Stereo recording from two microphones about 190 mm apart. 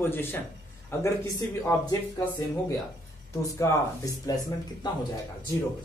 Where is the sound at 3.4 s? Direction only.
15° left (ahead or behind).